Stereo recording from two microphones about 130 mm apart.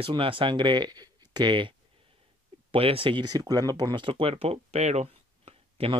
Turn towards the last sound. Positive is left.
turn(degrees=-50)  # may be behind; listen again after turning